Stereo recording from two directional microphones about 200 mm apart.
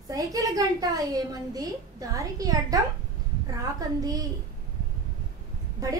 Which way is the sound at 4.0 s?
20° right (ahead or behind).